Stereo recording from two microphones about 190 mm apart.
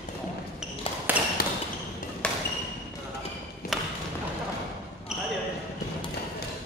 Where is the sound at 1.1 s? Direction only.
5° right (ahead or behind).